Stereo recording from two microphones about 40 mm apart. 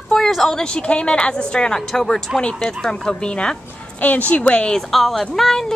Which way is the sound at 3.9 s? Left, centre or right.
Left.